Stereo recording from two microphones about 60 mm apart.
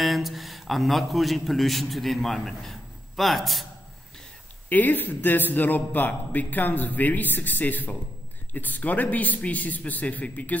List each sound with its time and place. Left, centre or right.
0.0 s a man's voice: centre
4.6 s a man's voice: left